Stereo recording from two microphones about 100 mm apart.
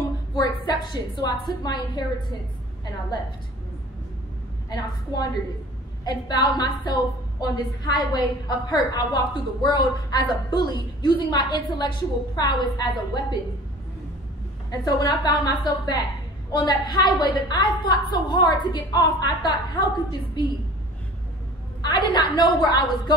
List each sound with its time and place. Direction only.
0.3 s a woman's voice: 45° left (ahead or behind)
4.6 s a woman's voice: 40° left (ahead or behind)
14.7 s a woman's voice: 40° left (ahead or behind)
21.8 s a woman's voice: 50° left (ahead or behind)